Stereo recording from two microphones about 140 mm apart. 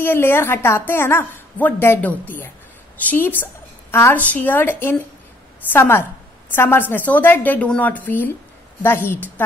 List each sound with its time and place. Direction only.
0.0 s a woman's voice: 15° left (ahead or behind)